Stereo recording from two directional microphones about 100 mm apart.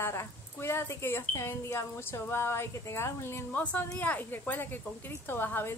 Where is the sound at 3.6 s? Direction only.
15° left (ahead or behind).